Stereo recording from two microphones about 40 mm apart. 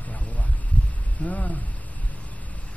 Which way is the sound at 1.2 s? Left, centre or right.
Left.